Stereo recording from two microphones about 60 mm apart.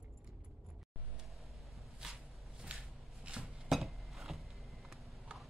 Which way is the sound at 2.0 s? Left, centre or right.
Centre.